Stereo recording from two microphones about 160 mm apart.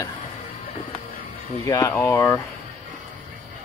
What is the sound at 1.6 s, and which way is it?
Speech, 20° left (ahead or behind).